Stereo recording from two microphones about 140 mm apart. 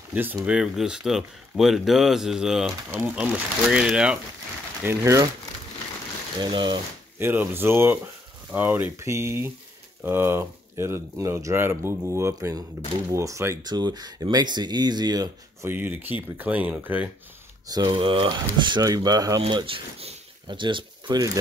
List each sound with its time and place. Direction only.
0.1 s speech: 15° right (ahead or behind)
4.8 s speech: 20° right (ahead or behind)
6.4 s speech: 30° right (ahead or behind)
7.2 s speech: 15° right (ahead or behind)
15.7 s speech: 15° right (ahead or behind)
17.6 s speech: 30° right (ahead or behind)
19.4 s speech: 40° right (ahead or behind)